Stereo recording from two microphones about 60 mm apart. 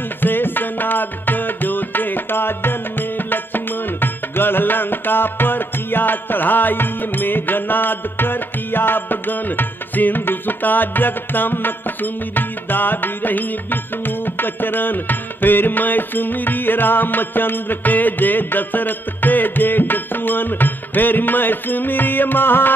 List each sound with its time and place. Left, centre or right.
0.2 s music: left